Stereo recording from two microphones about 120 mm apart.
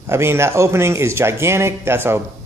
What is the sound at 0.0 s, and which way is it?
Speech, 20° right (ahead or behind).